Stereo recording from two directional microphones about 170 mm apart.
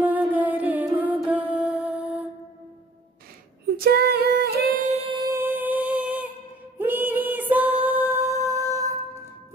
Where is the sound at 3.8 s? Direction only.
65° right (ahead or behind).